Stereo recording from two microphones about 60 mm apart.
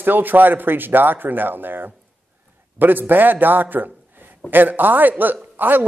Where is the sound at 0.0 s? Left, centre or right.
Right.